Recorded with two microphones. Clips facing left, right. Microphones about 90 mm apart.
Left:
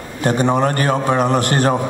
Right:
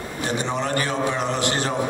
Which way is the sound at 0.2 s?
55° left (ahead or behind).